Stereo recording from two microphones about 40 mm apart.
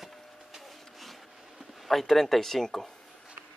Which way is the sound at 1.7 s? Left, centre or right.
Centre.